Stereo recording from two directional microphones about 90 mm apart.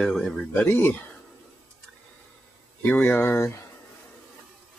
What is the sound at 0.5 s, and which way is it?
Speech, 25° left (ahead or behind).